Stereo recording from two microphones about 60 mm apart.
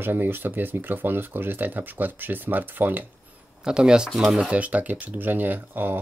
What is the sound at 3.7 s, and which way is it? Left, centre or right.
Speech, centre.